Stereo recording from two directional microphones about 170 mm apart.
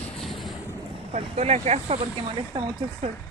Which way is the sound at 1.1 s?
40° right (ahead or behind).